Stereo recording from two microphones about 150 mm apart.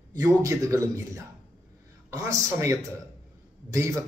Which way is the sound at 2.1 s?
20° right (ahead or behind).